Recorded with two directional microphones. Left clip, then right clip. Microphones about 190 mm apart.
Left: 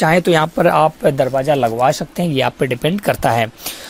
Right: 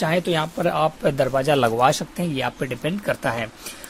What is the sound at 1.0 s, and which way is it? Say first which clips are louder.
Speech: left 5 dB; 20° left (ahead or behind).